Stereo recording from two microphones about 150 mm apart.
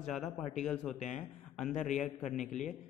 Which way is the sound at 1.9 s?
55° left (ahead or behind).